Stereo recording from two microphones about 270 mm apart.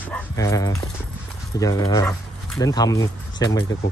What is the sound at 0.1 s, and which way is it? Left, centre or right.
Speech, centre.